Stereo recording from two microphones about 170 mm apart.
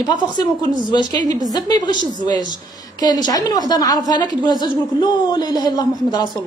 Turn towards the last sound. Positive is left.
turn(degrees=25)  # may be behind; listen again after turning